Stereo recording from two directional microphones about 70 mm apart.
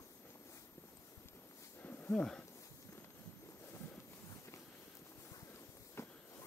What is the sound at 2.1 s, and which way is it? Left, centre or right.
Speech, centre.